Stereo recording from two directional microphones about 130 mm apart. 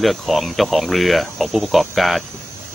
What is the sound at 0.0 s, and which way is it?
Speech, centre (ahead or behind).